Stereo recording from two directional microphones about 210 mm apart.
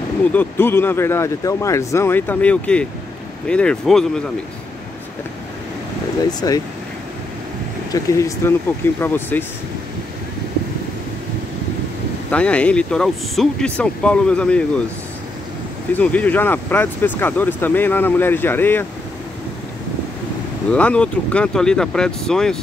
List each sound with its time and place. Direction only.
0.2 s speech: 10° left (ahead or behind)
6.4 s speech: 15° left (ahead or behind)
7.9 s speech: 15° left (ahead or behind)
12.3 s speech: 5° left (ahead or behind)
16.0 s speech: 5° left (ahead or behind)
20.7 s speech: 5° left (ahead or behind)